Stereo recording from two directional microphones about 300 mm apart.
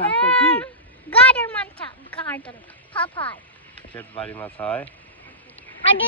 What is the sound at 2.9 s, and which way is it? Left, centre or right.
Speech, centre.